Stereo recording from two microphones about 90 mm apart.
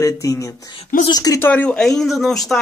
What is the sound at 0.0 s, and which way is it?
Speech, 40° left (ahead or behind).